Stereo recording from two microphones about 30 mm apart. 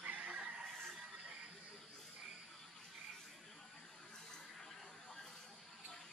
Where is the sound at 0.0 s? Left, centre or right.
Right.